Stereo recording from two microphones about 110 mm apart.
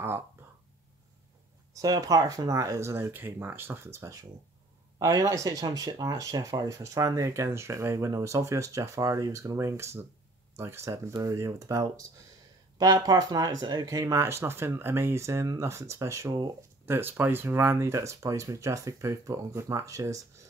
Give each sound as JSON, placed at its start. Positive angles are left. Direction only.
{"t": 1.7, "sound": "speech", "side_deg": -35}
{"t": 16.8, "sound": "speech", "side_deg": -20}